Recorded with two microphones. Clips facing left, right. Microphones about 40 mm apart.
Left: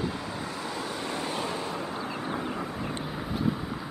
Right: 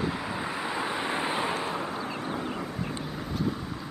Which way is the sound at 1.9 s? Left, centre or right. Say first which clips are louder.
Even; centre.